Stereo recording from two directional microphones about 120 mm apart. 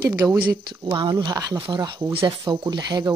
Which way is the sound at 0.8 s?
40° right (ahead or behind).